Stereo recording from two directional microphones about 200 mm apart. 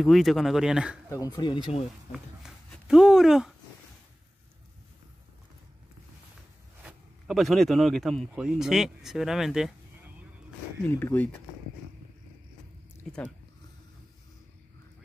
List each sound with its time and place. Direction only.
0.0 s speech: centre (ahead or behind)
1.1 s speech: 20° left (ahead or behind)
2.1 s speech: centre (ahead or behind)
6.8 s speech: 5° right (ahead or behind)
10.9 s speech: 10° left (ahead or behind)
13.0 s speech: 5° left (ahead or behind)